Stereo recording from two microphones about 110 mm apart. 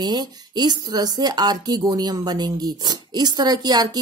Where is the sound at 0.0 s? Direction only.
40° right (ahead or behind).